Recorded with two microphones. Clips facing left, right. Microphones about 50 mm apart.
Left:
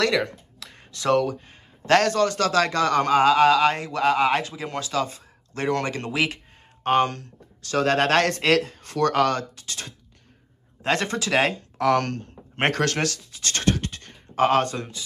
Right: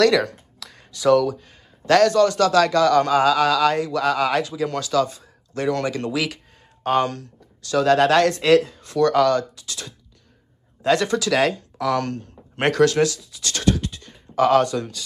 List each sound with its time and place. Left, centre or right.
0.0 s speech: left
11.8 s speech: left